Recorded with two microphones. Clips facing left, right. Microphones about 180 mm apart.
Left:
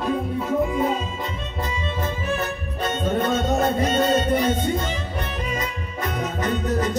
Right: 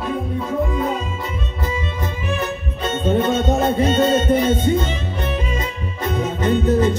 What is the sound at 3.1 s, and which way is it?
Music, 25° right (ahead or behind).